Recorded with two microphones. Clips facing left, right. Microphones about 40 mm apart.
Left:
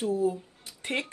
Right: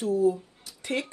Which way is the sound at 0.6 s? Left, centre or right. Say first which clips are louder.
Right 1 dB; left.